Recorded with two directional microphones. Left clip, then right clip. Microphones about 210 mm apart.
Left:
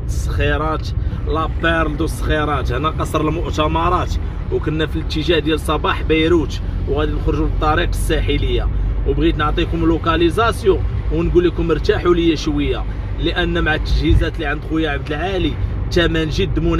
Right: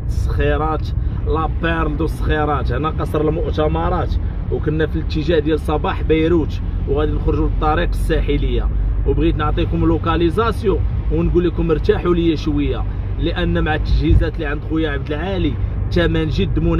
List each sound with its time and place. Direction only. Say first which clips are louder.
0.4 s speech: even; 20° right (ahead or behind); by 4.1 s centre (ahead or behind)
4.6 s speech: right 1 dB; 15° right (ahead or behind)